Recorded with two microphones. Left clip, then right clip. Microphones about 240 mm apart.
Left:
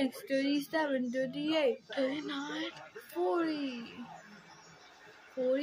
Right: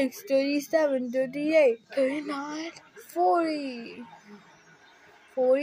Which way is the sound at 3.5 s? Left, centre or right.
Centre.